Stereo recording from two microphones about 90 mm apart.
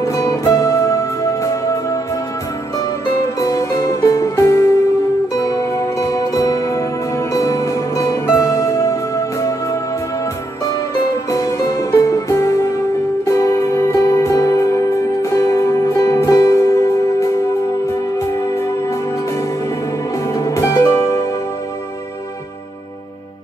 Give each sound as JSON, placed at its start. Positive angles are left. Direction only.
{"t": 0.0, "sound": "music", "side_deg": 40}
{"t": 3.3, "sound": "music", "side_deg": 40}
{"t": 11.2, "sound": "music", "side_deg": 40}
{"t": 20.3, "sound": "music", "side_deg": 35}